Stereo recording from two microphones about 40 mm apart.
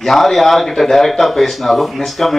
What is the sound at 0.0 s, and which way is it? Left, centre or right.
Speech, centre.